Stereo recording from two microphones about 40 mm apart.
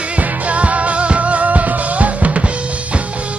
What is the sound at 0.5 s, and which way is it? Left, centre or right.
Music, right.